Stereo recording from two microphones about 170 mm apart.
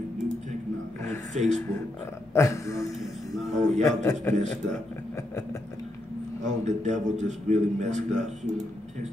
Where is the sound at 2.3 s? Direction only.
15° left (ahead or behind).